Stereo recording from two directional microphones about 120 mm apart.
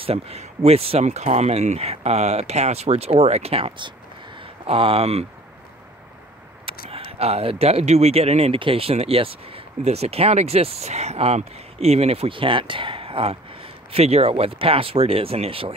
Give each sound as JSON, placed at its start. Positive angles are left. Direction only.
{"t": 0.0, "sound": "speech", "side_deg": -60}
{"t": 6.6, "sound": "speech", "side_deg": -55}